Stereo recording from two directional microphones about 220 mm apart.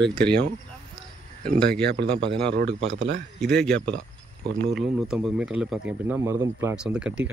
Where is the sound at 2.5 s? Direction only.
55° right (ahead or behind).